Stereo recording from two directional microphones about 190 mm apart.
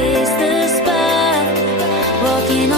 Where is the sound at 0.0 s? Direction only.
Centre (ahead or behind).